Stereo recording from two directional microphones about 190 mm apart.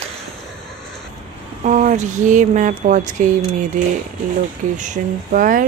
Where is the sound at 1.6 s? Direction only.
40° right (ahead or behind).